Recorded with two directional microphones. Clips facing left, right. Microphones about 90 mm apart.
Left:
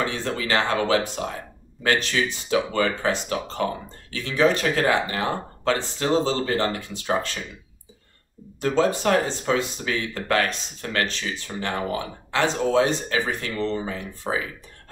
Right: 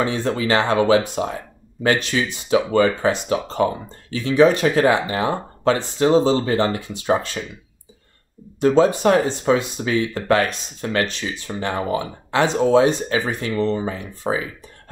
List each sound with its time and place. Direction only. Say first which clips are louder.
0.0 s speech: right 5 dB; 20° right (ahead or behind)
8.5 s speech: right 6 dB; 20° right (ahead or behind)